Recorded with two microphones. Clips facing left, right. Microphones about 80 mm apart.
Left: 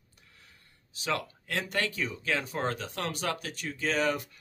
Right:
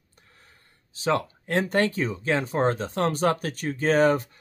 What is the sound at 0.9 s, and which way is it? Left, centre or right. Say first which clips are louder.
Speech: right 8 dB; right.